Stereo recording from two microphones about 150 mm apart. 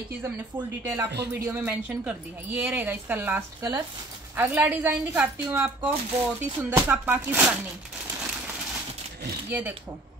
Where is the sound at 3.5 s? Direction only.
25° right (ahead or behind).